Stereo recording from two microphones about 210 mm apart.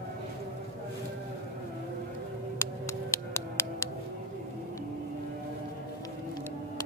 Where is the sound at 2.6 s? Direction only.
15° left (ahead or behind).